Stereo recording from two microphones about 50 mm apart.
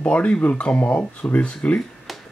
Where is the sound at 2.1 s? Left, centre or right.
Centre.